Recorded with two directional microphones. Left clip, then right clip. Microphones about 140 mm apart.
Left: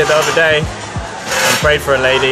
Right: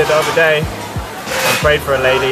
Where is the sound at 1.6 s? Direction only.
25° left (ahead or behind).